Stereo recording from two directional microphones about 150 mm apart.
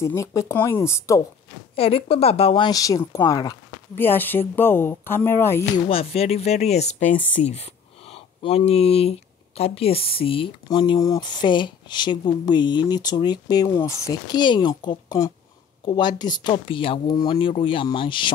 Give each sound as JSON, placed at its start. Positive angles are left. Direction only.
{"t": 0.0, "sound": "speech", "side_deg": 20}
{"t": 1.8, "sound": "speech", "side_deg": 40}
{"t": 3.9, "sound": "speech", "side_deg": 15}
{"t": 5.9, "sound": "speech", "side_deg": 40}